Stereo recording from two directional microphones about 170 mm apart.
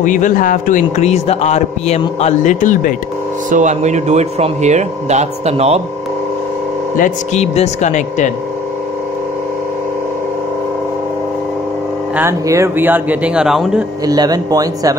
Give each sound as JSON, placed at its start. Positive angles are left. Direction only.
{"t": 0.0, "sound": "a man's voice", "side_deg": 50}
{"t": 3.4, "sound": "speech", "side_deg": -45}
{"t": 7.0, "sound": "a man's voice", "side_deg": 40}
{"t": 12.2, "sound": "speech", "side_deg": -15}
{"t": 14.0, "sound": "speech", "side_deg": -25}